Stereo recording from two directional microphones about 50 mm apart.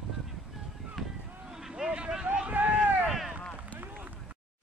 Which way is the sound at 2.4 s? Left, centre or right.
Right.